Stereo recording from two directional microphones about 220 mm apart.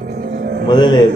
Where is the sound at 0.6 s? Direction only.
20° left (ahead or behind).